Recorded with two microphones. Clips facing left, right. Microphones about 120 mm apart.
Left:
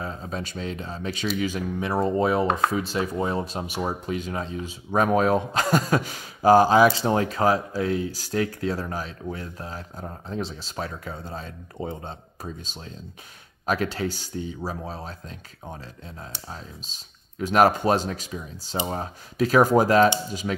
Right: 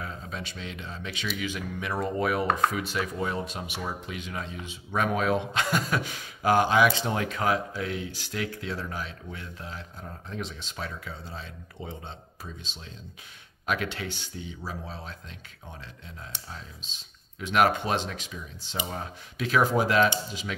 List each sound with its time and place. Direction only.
0.0 s speech: 35° left (ahead or behind)